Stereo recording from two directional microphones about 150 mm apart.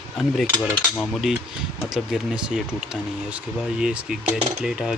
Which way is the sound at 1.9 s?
5° right (ahead or behind).